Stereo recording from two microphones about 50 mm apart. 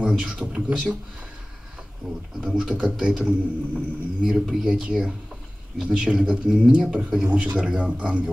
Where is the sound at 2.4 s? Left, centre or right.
Centre.